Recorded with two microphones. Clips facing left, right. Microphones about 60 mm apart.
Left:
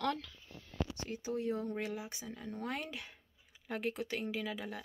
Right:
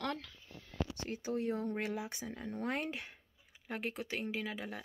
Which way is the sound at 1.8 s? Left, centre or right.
Right.